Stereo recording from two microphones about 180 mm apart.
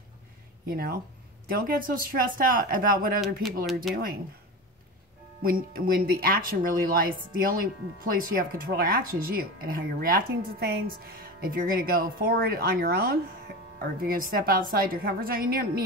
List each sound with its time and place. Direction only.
0.7 s speech: 55° right (ahead or behind)
3.9 s speech: centre (ahead or behind)
5.4 s speech: 55° right (ahead or behind)